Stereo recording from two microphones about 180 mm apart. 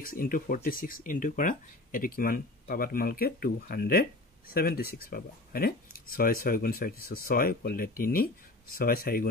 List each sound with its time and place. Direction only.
0.0 s speech: 50° left (ahead or behind)